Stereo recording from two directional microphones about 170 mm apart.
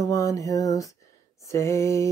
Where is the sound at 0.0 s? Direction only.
20° left (ahead or behind).